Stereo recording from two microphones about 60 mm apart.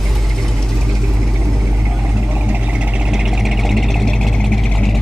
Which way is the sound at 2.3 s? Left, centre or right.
Right.